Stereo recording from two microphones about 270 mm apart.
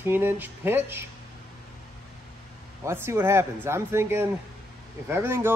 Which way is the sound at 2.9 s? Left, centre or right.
Centre.